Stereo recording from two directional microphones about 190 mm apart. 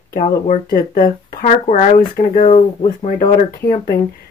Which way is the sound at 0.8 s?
50° left (ahead or behind).